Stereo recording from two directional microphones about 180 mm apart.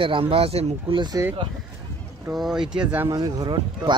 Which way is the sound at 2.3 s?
Centre (ahead or behind).